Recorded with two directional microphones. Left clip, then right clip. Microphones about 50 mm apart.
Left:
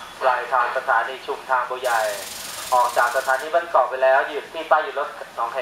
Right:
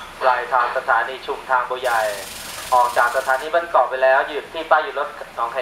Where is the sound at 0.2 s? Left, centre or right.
Right.